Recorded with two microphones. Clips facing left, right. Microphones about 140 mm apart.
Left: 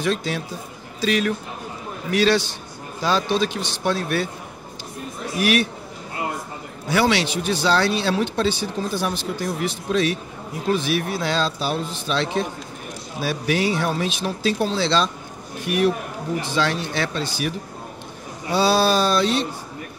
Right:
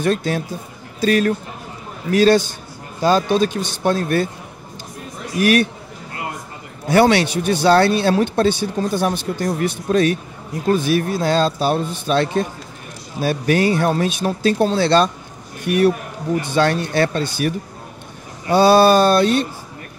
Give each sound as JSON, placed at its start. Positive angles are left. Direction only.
{"t": 0.0, "sound": "speech", "side_deg": -50}
{"t": 5.4, "sound": "speech", "side_deg": -50}
{"t": 6.9, "sound": "speech", "side_deg": -55}
{"t": 16.3, "sound": "speech", "side_deg": -50}
{"t": 18.5, "sound": "a sound", "side_deg": -55}